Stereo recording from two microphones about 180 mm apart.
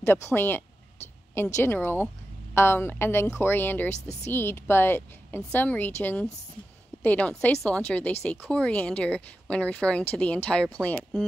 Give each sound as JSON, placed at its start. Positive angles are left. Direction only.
{"t": 0.0, "sound": "speech", "side_deg": 10}